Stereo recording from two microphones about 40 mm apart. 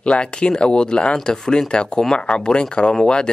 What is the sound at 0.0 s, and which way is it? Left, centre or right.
Speech, left.